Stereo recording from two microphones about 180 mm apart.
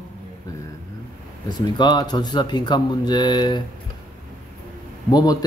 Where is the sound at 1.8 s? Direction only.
25° left (ahead or behind).